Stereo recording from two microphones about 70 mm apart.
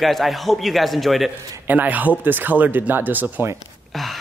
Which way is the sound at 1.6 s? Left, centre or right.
Right.